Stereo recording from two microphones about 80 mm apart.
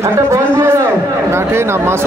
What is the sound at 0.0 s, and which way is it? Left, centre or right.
A man's voice, right.